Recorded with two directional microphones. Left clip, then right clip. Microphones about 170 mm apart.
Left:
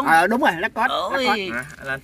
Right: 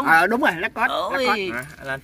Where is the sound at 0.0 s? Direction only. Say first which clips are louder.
Even; 40° left (ahead or behind).